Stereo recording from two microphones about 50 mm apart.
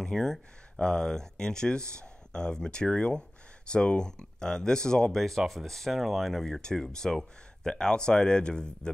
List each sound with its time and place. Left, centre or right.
0.0 s speech: centre